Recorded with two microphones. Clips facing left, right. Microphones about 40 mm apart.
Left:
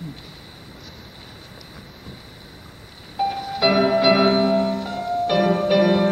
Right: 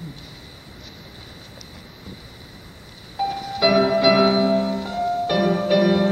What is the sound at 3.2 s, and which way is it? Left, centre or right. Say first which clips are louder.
Music: even; centre.